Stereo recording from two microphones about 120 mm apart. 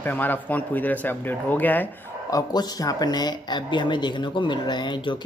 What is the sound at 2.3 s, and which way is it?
Speech, 35° left (ahead or behind).